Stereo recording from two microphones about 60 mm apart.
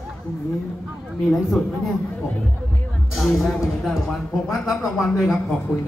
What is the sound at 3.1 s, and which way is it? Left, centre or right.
Speech, centre.